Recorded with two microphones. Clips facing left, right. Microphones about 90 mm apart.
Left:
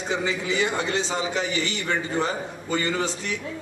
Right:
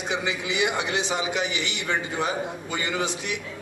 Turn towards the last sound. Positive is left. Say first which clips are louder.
# left 1 dB
turn(degrees=-15)  # may be behind; listen again after turning